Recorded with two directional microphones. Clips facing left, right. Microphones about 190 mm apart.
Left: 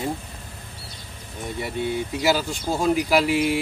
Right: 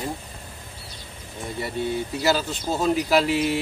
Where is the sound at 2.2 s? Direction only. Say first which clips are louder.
Left 1 dB; 10° left (ahead or behind).